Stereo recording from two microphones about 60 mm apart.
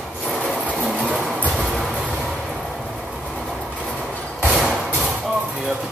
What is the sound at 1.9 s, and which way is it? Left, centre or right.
Vehicle, right.